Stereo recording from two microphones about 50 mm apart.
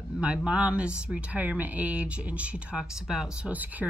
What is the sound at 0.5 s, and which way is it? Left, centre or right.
Speech, right.